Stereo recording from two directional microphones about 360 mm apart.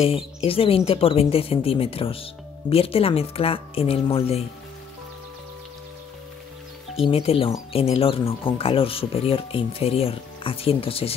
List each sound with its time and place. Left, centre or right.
0.0 s speech: centre
7.0 s speech: centre